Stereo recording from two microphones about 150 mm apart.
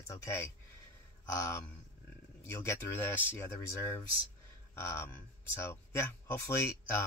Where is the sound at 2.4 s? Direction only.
20° left (ahead or behind).